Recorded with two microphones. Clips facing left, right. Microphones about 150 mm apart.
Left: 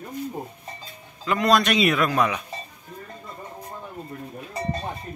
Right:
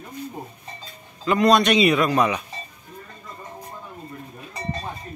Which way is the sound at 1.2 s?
Centre (ahead or behind).